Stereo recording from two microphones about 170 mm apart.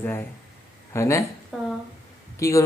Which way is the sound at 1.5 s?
Centre (ahead or behind).